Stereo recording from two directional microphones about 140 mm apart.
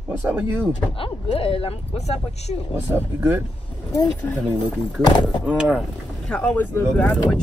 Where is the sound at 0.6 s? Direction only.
40° left (ahead or behind).